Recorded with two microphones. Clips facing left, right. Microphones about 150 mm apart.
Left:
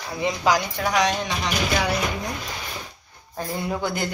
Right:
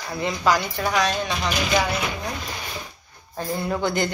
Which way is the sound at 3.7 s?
10° left (ahead or behind).